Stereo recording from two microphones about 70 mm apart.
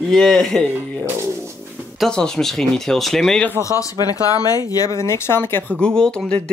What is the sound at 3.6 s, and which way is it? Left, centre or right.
Speech, left.